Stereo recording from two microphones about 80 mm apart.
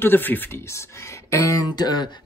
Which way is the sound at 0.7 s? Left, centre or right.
Left.